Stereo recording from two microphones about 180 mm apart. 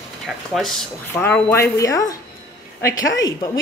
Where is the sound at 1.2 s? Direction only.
10° left (ahead or behind).